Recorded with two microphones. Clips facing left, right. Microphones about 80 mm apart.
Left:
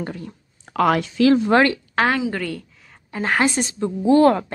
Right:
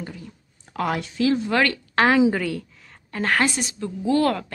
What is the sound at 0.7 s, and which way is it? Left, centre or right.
Speech, left.